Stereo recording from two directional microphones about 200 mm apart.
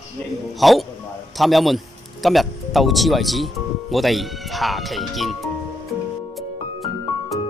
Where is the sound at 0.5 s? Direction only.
Centre (ahead or behind).